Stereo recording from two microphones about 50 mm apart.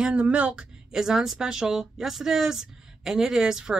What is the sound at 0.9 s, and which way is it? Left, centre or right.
Speech, centre.